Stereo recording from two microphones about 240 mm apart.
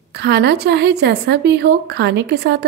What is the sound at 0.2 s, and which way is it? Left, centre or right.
Speech, right.